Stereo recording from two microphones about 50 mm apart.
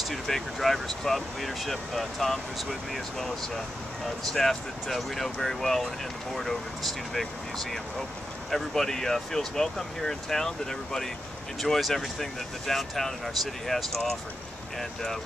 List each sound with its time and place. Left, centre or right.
0.0 s speech: centre